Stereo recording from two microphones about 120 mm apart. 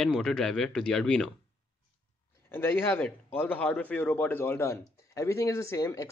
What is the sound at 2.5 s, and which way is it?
Speech, 20° left (ahead or behind).